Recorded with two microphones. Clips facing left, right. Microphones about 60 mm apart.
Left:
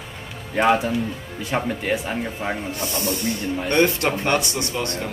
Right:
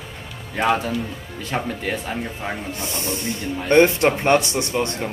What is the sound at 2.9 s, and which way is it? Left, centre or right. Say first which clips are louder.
A man's voice: left 3 dB; right.